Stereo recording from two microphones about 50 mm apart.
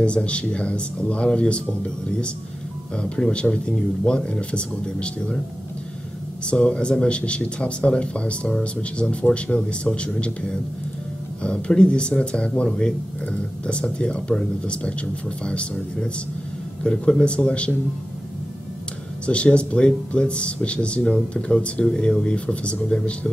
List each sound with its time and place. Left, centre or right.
0.0 s speech: left
6.5 s speech: left
16.8 s speech: left
19.2 s speech: left